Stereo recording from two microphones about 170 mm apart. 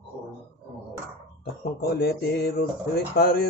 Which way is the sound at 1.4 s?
65° left (ahead or behind).